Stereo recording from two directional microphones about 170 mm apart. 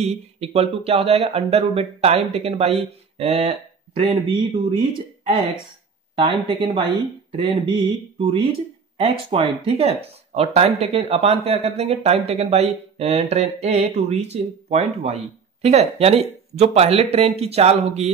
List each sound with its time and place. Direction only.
0.0 s speech: 40° right (ahead or behind)
8.9 s speech: 35° right (ahead or behind)